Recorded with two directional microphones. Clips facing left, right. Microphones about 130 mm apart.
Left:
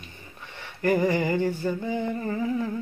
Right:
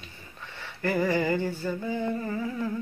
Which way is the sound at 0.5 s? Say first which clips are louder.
Left 4 dB; 15° left (ahead or behind).